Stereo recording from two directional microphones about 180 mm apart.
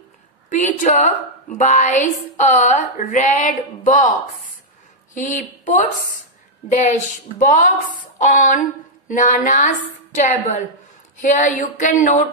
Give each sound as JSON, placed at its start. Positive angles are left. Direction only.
{"t": 0.5, "sound": "speech", "side_deg": 45}
{"t": 5.1, "sound": "a woman's voice", "side_deg": 45}